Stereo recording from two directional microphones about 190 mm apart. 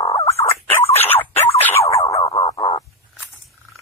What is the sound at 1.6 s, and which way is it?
Music, 10° left (ahead or behind).